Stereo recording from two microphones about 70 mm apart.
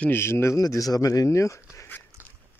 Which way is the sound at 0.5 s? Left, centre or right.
Left.